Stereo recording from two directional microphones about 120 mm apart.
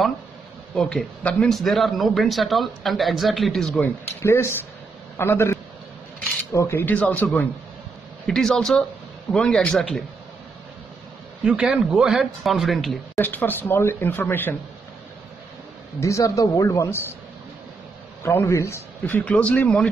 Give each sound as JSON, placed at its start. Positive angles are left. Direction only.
{"t": 0.7, "sound": "speech", "side_deg": 10}
{"t": 4.2, "sound": "a man's voice", "side_deg": 20}
{"t": 11.4, "sound": "speech", "side_deg": -5}
{"t": 13.1, "sound": "speech", "side_deg": 15}
{"t": 16.0, "sound": "speech", "side_deg": 25}
{"t": 18.2, "sound": "speech", "side_deg": 20}